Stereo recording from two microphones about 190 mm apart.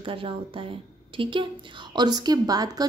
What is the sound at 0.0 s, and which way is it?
A woman's voice, 25° right (ahead or behind).